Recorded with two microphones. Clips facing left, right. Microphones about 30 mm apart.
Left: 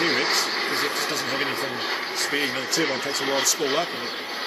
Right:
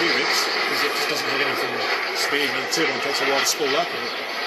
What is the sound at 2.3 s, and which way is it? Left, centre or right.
Speech, centre.